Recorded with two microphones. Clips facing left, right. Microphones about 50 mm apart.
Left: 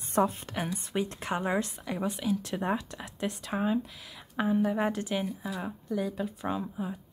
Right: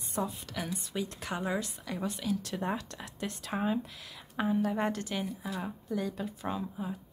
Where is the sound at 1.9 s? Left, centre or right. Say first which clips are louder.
Left 1 dB; centre.